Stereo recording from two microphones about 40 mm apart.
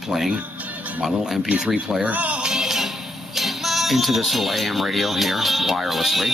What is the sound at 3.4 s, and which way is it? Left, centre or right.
Speech, centre.